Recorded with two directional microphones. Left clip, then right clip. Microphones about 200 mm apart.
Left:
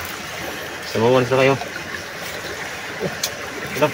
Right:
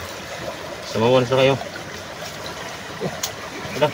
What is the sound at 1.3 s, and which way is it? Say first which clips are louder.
Speech: left 1 dB; 30° left (ahead or behind).